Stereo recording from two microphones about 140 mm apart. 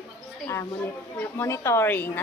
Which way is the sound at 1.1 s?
15° left (ahead or behind).